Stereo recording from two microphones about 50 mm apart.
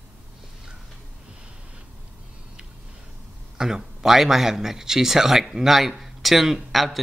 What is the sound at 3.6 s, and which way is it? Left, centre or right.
Speech, centre.